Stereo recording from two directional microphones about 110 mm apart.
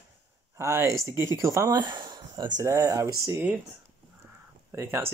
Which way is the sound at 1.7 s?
40° right (ahead or behind).